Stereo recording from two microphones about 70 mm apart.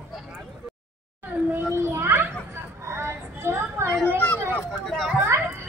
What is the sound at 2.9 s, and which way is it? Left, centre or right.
Child singing, right.